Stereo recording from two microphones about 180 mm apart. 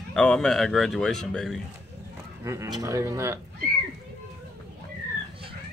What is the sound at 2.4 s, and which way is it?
Speech, 15° right (ahead or behind).